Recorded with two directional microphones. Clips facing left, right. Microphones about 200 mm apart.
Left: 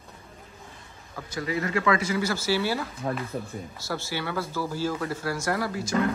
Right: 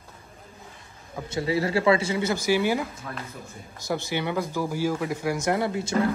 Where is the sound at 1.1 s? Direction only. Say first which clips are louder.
Right 4 dB; 25° right (ahead or behind).